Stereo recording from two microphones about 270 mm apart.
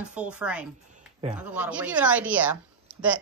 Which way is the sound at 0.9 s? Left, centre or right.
Right.